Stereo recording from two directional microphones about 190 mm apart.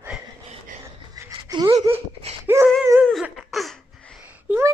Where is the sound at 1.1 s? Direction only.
15° right (ahead or behind).